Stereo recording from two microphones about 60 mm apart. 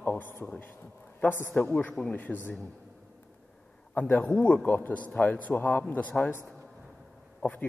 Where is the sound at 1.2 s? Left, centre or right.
Left.